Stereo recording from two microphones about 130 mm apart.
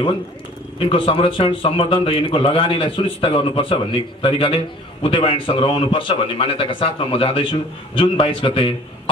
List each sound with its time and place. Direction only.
0.7 s a man's voice: 45° left (ahead or behind)